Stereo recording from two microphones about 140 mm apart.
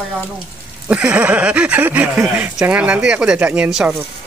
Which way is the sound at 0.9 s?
10° right (ahead or behind).